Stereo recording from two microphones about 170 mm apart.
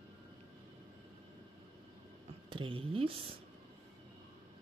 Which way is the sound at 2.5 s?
30° right (ahead or behind).